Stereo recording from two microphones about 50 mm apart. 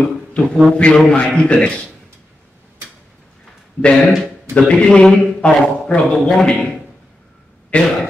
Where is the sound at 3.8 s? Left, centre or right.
Left.